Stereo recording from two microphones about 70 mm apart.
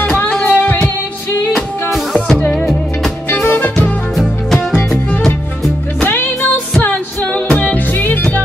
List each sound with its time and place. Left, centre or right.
0.0 s music: centre
1.5 s music: centre
3.4 s music: left
5.9 s music: left